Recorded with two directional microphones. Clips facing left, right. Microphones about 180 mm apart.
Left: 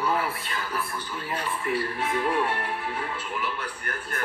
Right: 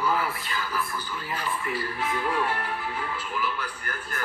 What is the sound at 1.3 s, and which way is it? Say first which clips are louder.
Speech: left 3 dB; 30° left (ahead or behind).